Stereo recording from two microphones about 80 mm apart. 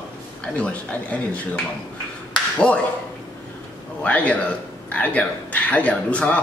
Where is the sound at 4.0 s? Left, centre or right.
Centre.